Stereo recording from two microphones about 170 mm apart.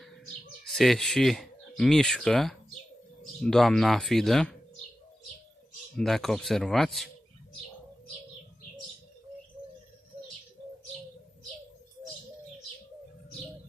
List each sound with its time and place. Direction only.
0.0 s bird: centre (ahead or behind)
3.2 s speech: 5° left (ahead or behind)
5.9 s speech: centre (ahead or behind)